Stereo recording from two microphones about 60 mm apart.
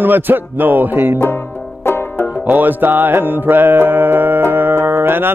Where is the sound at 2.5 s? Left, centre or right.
Right.